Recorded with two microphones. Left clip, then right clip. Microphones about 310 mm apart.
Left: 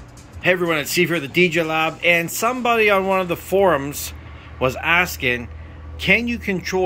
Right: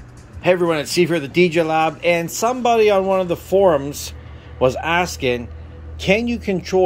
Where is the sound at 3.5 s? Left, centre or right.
Centre.